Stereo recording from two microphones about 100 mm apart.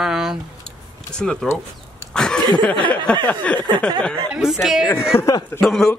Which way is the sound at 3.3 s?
15° left (ahead or behind).